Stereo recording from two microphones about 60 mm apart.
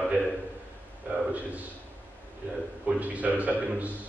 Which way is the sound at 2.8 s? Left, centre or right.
Right.